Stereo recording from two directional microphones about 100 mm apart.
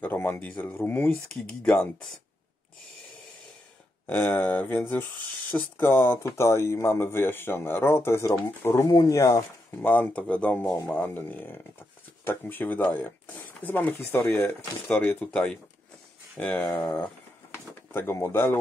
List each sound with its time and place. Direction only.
0.0 s speech: 20° left (ahead or behind)
4.1 s speech: 20° left (ahead or behind)
8.8 s speech: 35° left (ahead or behind)
9.8 s speech: 15° left (ahead or behind)
17.9 s speech: 25° left (ahead or behind)